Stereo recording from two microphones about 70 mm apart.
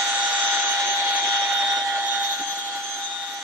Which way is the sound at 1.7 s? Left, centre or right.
Right.